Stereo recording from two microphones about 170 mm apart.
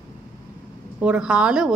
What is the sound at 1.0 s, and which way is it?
Speech, 5° right (ahead or behind).